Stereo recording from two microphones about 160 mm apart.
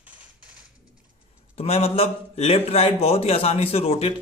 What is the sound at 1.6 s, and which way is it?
A man's voice, 40° left (ahead or behind).